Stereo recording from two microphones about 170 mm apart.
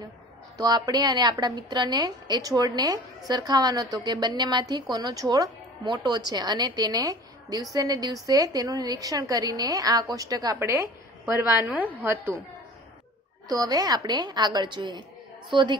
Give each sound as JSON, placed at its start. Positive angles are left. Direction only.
{"t": 0.6, "sound": "a woman's voice", "side_deg": -20}
{"t": 13.5, "sound": "a woman's voice", "side_deg": -20}